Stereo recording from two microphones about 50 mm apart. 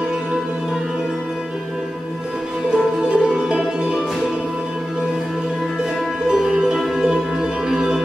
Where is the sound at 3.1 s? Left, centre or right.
Centre.